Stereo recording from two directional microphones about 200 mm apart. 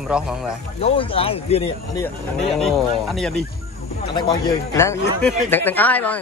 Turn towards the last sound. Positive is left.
turn(degrees=10)  # may be behind; listen again after turning